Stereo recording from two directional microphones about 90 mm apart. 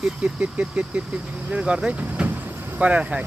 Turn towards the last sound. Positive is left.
turn(degrees=-15)  # may be behind; listen again after turning